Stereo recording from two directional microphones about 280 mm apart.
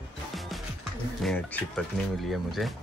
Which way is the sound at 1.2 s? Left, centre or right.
Centre.